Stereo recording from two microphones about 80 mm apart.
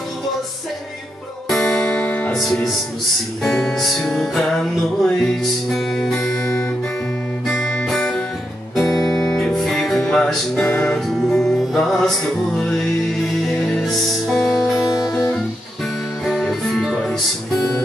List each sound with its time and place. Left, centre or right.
1.5 s music: centre
2.3 s music: centre
7.4 s guitar: centre
8.7 s music: centre
14.8 s music: left
16.3 s music: centre